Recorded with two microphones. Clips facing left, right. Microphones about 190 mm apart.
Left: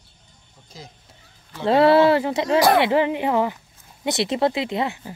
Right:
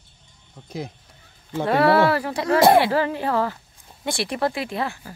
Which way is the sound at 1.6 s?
25° left (ahead or behind).